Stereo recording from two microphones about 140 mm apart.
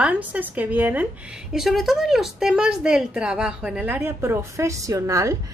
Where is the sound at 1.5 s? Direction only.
Centre (ahead or behind).